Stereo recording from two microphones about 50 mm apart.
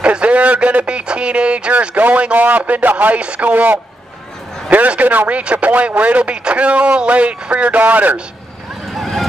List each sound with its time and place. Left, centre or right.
0.0 s a man's voice: right
5.4 s speech: right
8.9 s vehicle: centre